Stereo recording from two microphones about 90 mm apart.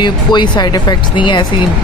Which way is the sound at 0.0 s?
55° left (ahead or behind).